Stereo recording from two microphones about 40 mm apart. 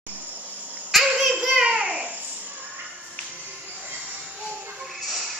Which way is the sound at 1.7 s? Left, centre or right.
Right.